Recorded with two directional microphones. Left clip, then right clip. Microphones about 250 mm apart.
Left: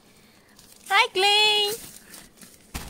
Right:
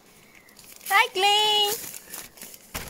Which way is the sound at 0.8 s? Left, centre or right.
Centre.